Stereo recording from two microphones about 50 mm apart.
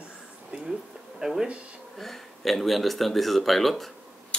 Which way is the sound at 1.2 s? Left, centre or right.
Centre.